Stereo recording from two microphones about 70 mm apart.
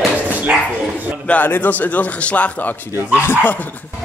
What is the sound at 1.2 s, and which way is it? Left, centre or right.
A man's voice, left.